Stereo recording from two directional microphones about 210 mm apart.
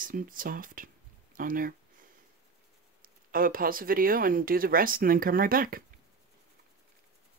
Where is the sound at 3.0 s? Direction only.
40° right (ahead or behind).